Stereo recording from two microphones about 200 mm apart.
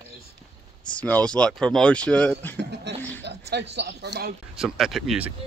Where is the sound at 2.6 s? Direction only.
60° right (ahead or behind).